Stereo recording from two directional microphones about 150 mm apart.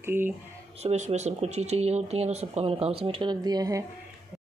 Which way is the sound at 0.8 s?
45° right (ahead or behind).